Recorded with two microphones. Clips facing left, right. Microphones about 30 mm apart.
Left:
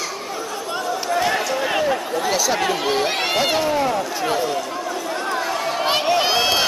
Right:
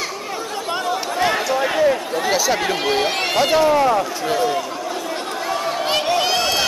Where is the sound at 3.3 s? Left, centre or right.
Centre.